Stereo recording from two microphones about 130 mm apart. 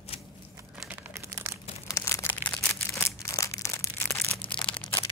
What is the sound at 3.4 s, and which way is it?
Crushing, 20° left (ahead or behind).